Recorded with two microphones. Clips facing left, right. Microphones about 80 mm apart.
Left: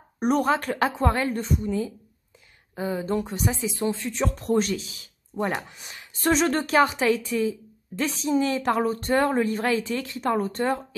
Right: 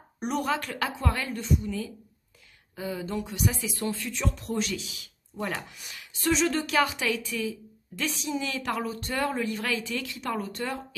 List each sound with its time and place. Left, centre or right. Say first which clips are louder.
0.2 s speech: left 6 dB; left
4.1 s speech: left 7 dB; left